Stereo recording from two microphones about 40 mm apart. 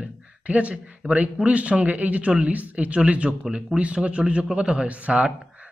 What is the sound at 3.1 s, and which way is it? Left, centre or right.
A man's voice, right.